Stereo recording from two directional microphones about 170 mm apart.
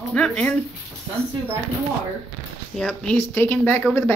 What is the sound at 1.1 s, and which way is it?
Speech, 15° right (ahead or behind).